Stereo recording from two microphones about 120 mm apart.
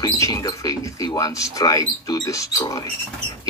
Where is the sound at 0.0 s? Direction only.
30° left (ahead or behind).